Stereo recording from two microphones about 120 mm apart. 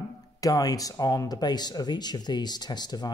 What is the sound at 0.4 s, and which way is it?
Speech, 30° left (ahead or behind).